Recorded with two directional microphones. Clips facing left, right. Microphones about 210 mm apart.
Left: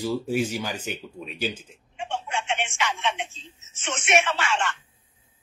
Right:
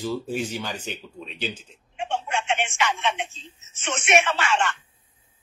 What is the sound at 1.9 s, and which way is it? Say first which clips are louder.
Speech: right 3 dB; 60° right (ahead or behind).